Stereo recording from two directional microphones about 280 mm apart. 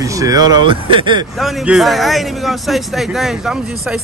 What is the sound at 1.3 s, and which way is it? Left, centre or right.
A man's voice, centre.